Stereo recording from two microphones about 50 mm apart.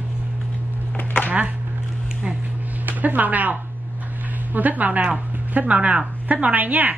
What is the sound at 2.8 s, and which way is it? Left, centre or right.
A woman's voice, right.